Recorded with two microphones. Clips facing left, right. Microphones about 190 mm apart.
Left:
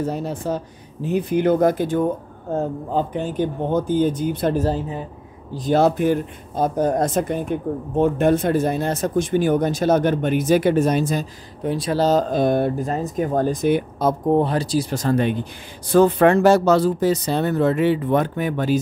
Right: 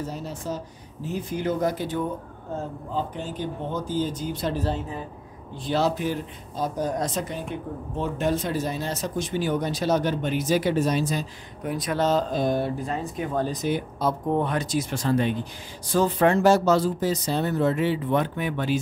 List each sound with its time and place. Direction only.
0.0 s speech: 60° left (ahead or behind)
11.6 s speech: 30° left (ahead or behind)
12.3 s speech: 60° left (ahead or behind)
14.3 s speech: 30° left (ahead or behind)